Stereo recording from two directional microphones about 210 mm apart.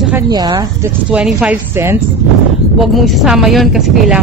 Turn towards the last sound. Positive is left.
turn(degrees=0)  # may be behind; listen again after turning